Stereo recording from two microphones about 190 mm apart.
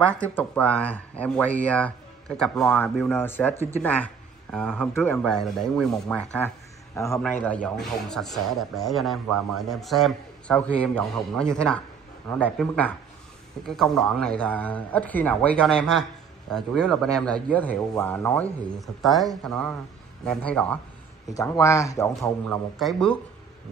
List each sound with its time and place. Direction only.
0.0 s a man's voice: 5° left (ahead or behind)
22.8 s a man's voice: centre (ahead or behind)